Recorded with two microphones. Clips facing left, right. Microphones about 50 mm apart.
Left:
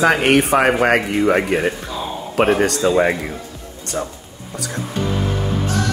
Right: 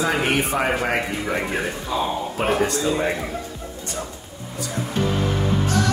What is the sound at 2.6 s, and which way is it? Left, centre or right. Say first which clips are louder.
Speech: left 4 dB; left.